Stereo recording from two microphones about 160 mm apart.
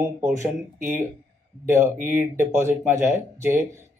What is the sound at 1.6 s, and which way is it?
A man's voice, 15° right (ahead or behind).